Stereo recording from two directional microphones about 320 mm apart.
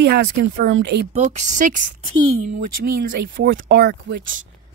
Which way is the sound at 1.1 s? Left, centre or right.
Right.